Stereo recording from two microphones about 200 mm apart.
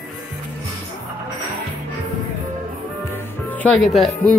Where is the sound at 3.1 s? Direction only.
10° left (ahead or behind).